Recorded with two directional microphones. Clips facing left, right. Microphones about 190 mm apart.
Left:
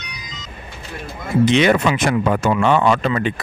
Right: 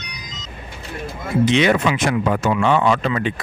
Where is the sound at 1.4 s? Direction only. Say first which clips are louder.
Left 2 dB; 50° left (ahead or behind).